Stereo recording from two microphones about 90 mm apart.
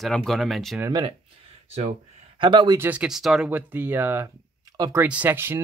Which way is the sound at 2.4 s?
65° right (ahead or behind).